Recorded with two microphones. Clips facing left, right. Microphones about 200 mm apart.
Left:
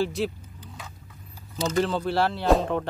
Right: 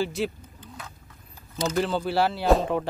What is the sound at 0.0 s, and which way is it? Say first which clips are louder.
Speech: left 1 dB; centre (ahead or behind).